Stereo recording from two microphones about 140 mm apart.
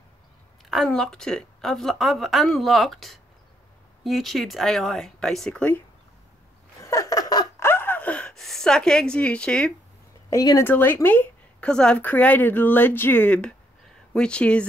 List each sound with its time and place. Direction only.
0.7 s a woman's voice: centre (ahead or behind)
6.8 s laughter: 25° left (ahead or behind); by 9.7 s 5° left (ahead or behind)
10.3 s speech: 25° left (ahead or behind)
10.6 s a woman's voice: 15° left (ahead or behind)